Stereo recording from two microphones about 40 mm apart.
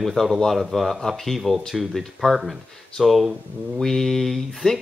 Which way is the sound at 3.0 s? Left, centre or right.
Centre.